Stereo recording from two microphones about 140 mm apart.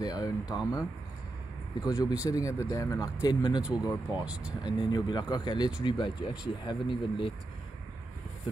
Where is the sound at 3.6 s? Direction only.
10° right (ahead or behind).